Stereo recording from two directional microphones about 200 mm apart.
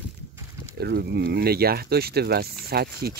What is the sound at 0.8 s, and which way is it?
Speech, 55° right (ahead or behind).